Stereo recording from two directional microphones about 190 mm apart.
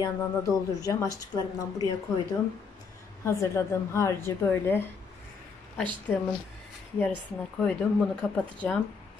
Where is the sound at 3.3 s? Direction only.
15° left (ahead or behind).